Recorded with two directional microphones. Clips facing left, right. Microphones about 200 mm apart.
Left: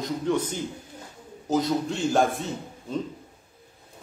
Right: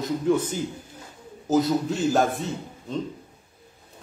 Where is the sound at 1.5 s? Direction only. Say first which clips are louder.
Right 3 dB; 5° right (ahead or behind).